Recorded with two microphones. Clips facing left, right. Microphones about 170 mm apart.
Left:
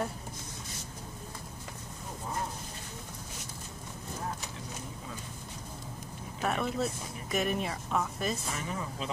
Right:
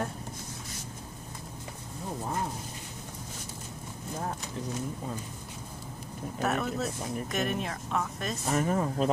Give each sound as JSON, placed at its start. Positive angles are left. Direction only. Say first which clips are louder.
{"t": 6.4, "sound": "speech", "louder": "right 1 dB", "side_deg": 0}
{"t": 8.5, "sound": "speech", "louder": "right 9 dB", "side_deg": -45}